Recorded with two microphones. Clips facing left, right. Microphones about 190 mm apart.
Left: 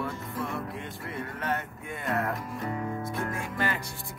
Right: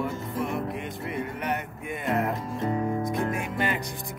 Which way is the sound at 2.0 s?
20° right (ahead or behind).